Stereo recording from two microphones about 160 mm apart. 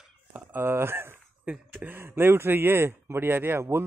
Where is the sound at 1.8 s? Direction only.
15° right (ahead or behind).